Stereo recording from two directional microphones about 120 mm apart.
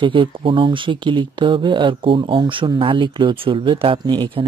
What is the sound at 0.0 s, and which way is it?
Speech, 45° right (ahead or behind).